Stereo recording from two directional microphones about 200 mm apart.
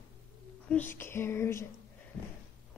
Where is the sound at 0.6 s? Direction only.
10° left (ahead or behind).